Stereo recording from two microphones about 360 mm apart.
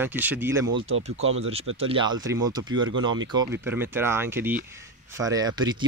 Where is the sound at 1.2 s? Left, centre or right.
Right.